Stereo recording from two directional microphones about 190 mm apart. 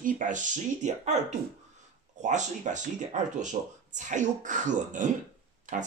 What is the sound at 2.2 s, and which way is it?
Speech, 40° right (ahead or behind).